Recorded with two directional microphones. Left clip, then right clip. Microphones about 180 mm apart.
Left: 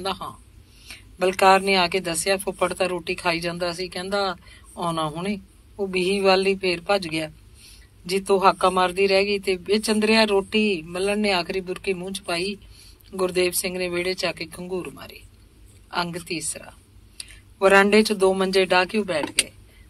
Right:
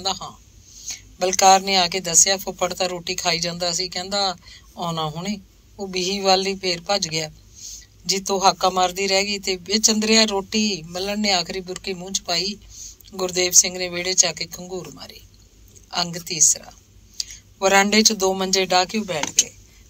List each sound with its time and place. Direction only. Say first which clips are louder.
0.0 s a man's voice: right 2 dB; 25° right (ahead or behind)